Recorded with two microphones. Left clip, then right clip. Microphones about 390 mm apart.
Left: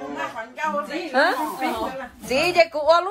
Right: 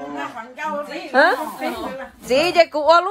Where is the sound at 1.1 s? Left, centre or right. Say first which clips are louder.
Right 4 dB; right.